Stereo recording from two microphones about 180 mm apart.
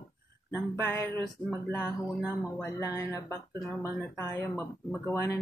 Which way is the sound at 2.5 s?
15° left (ahead or behind).